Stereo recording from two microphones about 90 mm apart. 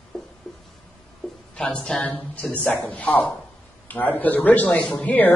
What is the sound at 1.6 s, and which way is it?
Speech, 5° left (ahead or behind).